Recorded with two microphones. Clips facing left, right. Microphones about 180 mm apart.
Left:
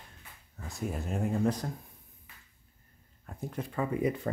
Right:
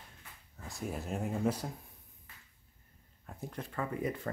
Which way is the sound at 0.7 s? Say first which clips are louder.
Left 3 dB; centre (ahead or behind).